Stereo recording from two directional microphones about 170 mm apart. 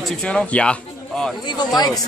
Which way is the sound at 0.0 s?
5° left (ahead or behind).